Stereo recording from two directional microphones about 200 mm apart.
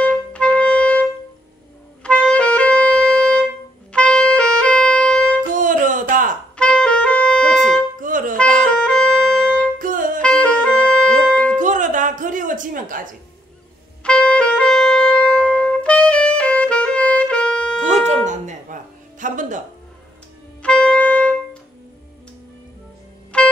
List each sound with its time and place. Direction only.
0.0 s music: 5° left (ahead or behind)
2.0 s music: 5° left (ahead or behind)
5.6 s music: 40° right (ahead or behind)
6.5 s music: 5° left (ahead or behind)
8.0 s music: 40° right (ahead or behind)
8.6 s music: 5° left (ahead or behind)
9.8 s music: 40° right (ahead or behind)
10.2 s music: 5° left (ahead or behind)
11.5 s music: 40° right (ahead or behind)
14.0 s music: 5° left (ahead or behind)
18.2 s music: 35° right (ahead or behind)
20.6 s music: 5° left (ahead or behind)
23.3 s music: 5° left (ahead or behind)